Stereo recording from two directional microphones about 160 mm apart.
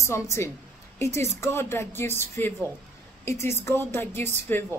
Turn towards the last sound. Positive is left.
turn(degrees=10)  # may be behind; listen again after turning